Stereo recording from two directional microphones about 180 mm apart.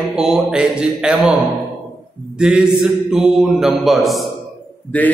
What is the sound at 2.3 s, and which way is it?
Mantra, 5° right (ahead or behind).